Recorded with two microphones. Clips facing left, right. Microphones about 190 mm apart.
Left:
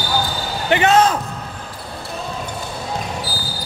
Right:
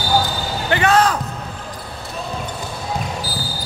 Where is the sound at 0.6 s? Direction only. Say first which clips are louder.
Left 2 dB; 20° left (ahead or behind).